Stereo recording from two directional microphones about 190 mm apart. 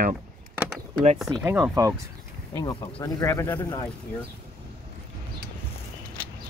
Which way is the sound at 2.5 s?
20° left (ahead or behind).